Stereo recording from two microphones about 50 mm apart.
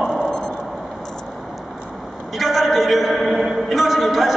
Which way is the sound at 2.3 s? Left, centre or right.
Centre.